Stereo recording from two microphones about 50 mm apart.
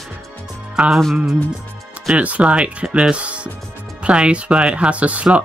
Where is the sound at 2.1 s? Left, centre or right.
Right.